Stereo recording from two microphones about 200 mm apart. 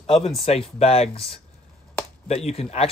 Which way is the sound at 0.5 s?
30° left (ahead or behind).